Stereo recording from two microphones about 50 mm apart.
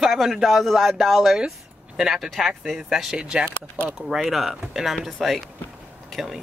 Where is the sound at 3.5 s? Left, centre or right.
Left.